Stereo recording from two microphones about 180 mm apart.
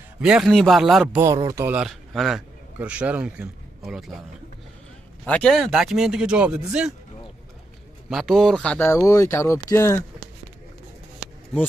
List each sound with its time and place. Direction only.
0.2 s speech: 5° right (ahead or behind)
1.2 s speech: 20° right (ahead or behind)
1.8 s a man's voice: centre (ahead or behind)
5.2 s speech: 5° left (ahead or behind)
8.1 s speech: centre (ahead or behind); by 10.0 s 15° left (ahead or behind)